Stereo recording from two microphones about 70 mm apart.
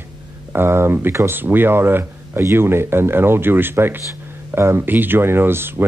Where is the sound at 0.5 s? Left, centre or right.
Right.